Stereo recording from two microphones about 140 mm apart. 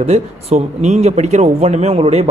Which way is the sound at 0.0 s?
50° right (ahead or behind).